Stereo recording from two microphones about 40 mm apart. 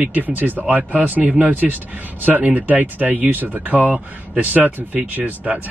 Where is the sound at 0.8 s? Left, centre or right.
Right.